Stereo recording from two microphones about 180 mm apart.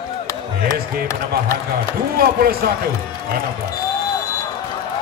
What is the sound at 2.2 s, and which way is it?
Speech, 55° right (ahead or behind).